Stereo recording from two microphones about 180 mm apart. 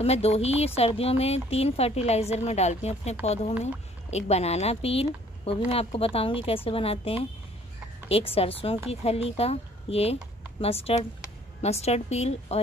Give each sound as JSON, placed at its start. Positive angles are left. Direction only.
{"t": 0.0, "sound": "speech", "side_deg": 35}